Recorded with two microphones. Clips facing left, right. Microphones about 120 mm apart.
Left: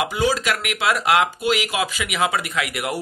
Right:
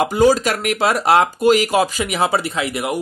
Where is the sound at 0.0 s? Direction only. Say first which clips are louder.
Right 7 dB; 40° right (ahead or behind).